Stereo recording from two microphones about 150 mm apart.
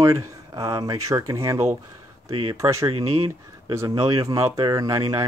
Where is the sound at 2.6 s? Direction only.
20° right (ahead or behind).